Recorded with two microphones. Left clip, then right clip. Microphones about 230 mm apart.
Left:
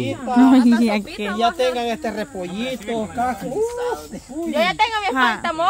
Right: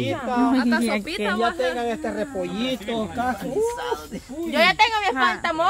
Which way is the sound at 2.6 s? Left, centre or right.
Left.